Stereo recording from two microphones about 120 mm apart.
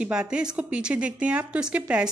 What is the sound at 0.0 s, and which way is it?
Speech, 10° right (ahead or behind).